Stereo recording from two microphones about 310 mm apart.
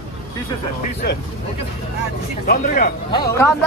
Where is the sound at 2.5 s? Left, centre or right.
Left.